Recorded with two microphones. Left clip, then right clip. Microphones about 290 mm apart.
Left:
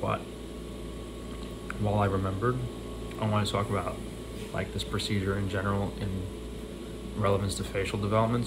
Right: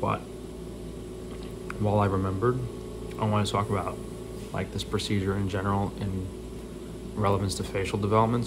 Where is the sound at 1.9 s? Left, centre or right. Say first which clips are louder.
Right 2 dB; centre.